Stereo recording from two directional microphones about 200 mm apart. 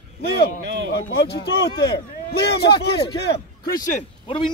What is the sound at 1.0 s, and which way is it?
Speech, 55° left (ahead or behind).